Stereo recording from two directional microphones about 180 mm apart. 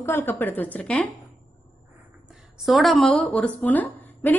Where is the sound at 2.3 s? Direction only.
Centre (ahead or behind).